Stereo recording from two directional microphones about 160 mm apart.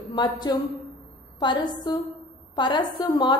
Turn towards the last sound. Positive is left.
turn(degrees=25)  # may be behind; listen again after turning